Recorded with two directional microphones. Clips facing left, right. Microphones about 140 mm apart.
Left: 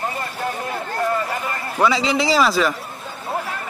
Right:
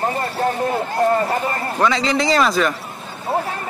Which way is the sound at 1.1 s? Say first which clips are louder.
Right 5 dB; 40° right (ahead or behind).